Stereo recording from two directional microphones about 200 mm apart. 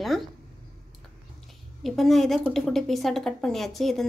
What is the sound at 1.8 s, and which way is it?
A woman's voice, centre (ahead or behind).